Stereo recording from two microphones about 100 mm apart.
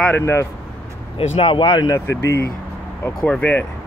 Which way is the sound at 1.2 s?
70° left (ahead or behind).